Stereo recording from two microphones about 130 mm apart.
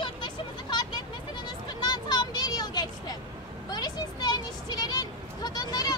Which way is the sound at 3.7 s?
30° left (ahead or behind).